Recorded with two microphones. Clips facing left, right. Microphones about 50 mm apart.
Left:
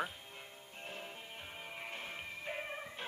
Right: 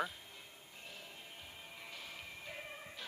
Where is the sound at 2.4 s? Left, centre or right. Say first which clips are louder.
Left 8 dB; left.